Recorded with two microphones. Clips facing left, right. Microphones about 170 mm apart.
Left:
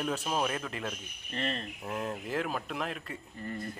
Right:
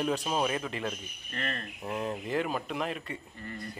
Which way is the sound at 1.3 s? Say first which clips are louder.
Left 2 dB; 20° left (ahead or behind).